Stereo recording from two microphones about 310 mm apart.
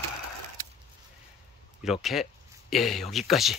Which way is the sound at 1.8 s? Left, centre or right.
Centre.